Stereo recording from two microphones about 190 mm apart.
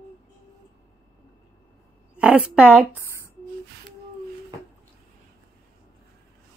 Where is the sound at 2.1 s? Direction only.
5° right (ahead or behind).